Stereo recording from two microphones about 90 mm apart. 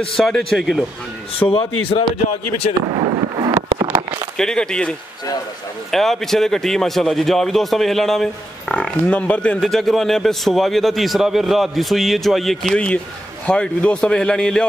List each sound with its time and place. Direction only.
0.1 s a man's voice: 5° left (ahead or behind)
1.5 s speech: 90° left
2.9 s fireworks: 65° right (ahead or behind)
4.4 s a man's voice: 10° left (ahead or behind)
9.6 s a man's voice: 5° left (ahead or behind)
12.7 s a man's voice: 15° left (ahead or behind)